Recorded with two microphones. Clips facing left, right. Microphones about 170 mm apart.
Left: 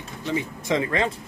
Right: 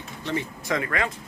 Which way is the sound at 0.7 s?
25° left (ahead or behind).